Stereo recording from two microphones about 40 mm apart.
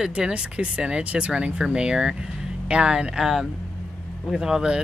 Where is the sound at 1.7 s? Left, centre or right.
Centre.